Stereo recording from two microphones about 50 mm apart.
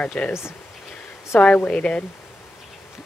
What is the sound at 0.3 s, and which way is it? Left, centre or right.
Speech, left.